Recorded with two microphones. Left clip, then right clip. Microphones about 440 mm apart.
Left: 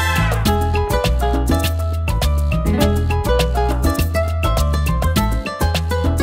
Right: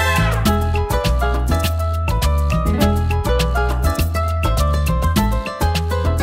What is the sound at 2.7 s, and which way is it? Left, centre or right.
Music, left.